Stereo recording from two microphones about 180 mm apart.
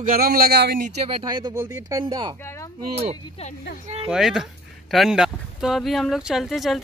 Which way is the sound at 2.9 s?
35° right (ahead or behind).